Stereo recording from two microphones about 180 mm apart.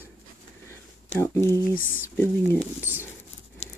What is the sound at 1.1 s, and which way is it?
Speech, 15° left (ahead or behind).